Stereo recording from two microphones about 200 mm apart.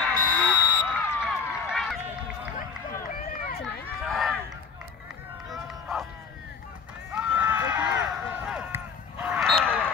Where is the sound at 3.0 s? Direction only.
45° left (ahead or behind).